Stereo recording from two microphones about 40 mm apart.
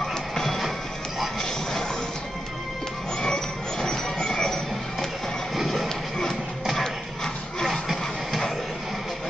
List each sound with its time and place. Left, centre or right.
0.0 s music: centre
3.2 s music: centre
5.5 s music: centre
7.6 s a sound: centre